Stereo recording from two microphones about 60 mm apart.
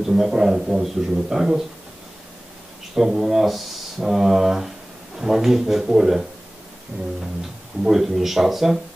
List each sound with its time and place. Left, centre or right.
0.0 s a man's voice: centre
2.9 s speech: centre
6.9 s a sound: right
7.8 s speech: centre